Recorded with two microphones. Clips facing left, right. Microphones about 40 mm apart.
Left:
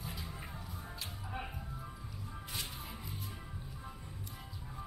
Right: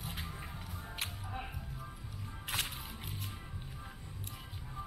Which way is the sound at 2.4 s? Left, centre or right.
Right.